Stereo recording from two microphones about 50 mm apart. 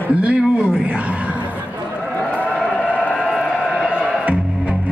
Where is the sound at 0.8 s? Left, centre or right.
Right.